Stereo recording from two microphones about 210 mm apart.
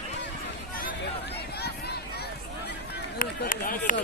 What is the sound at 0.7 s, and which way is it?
Hubbub, 45° left (ahead or behind).